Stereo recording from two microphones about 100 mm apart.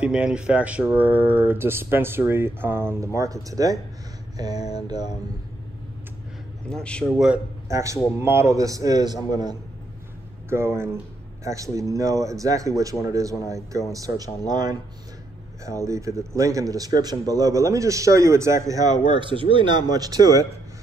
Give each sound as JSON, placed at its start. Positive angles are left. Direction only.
{"t": 0.0, "sound": "speech", "side_deg": -10}
{"t": 3.2, "sound": "speech", "side_deg": -35}
{"t": 4.6, "sound": "mantra", "side_deg": 90}
{"t": 6.7, "sound": "a man's voice", "side_deg": 10}
{"t": 7.6, "sound": "a man's voice", "side_deg": -30}
{"t": 10.5, "sound": "speech", "side_deg": -25}
{"t": 15.6, "sound": "speech", "side_deg": -30}
{"t": 19.0, "sound": "speech", "side_deg": -55}